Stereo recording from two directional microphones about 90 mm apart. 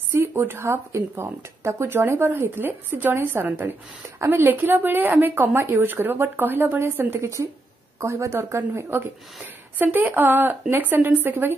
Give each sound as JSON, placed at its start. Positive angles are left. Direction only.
{"t": 0.1, "sound": "speech", "side_deg": -30}